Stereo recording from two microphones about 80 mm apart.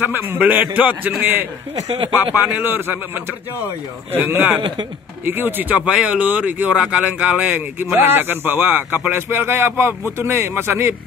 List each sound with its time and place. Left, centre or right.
0.0 s speech: right
4.6 s speech: right
5.2 s speech: right